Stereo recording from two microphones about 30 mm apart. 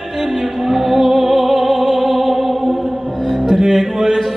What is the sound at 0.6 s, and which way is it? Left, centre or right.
Music, centre.